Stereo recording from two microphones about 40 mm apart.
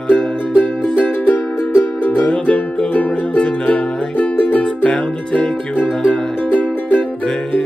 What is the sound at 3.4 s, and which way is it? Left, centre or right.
Music, left.